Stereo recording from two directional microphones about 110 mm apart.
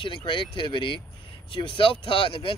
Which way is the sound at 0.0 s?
50° left (ahead or behind).